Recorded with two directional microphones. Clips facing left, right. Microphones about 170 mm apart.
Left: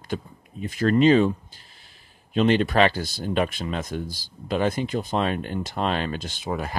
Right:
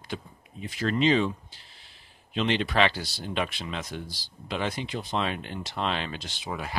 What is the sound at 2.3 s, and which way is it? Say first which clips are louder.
Speech: left 6 dB; 45° left (ahead or behind).